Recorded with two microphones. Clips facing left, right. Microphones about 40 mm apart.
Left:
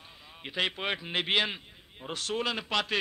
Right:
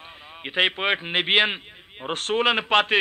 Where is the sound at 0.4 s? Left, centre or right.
Right.